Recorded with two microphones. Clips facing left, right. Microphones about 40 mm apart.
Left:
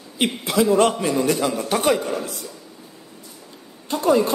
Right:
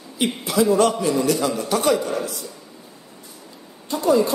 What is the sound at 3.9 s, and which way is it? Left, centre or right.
Speech, left.